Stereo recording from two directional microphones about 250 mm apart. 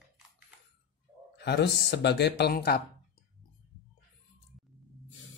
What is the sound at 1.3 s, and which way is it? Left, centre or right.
Speech, left.